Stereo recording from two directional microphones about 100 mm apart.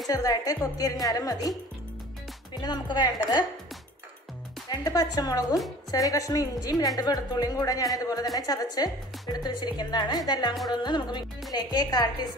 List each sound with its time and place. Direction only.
0.1 s a woman's voice: 35° left (ahead or behind)
2.6 s speech: 45° left (ahead or behind)
4.6 s a woman's voice: 40° left (ahead or behind)